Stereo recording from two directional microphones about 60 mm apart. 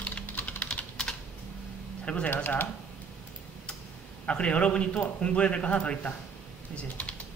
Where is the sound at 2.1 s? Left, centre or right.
Centre.